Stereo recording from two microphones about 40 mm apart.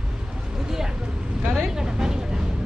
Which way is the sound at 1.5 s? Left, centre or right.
Centre.